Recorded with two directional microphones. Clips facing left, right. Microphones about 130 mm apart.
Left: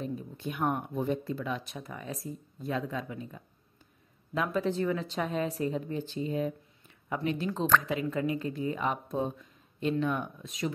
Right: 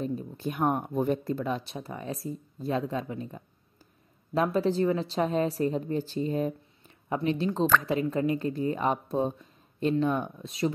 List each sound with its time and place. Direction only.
0.0 s speech: 35° right (ahead or behind)